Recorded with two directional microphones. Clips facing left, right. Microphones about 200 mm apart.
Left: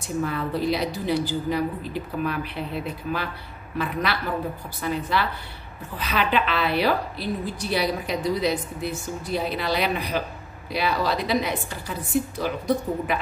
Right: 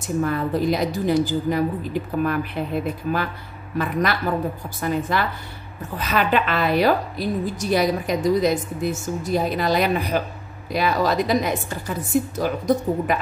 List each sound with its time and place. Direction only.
0.0 s a woman's voice: 45° right (ahead or behind)